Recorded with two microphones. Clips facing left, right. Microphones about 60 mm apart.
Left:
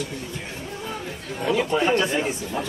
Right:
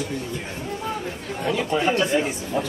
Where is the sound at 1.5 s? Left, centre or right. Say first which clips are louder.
Left 1 dB; centre.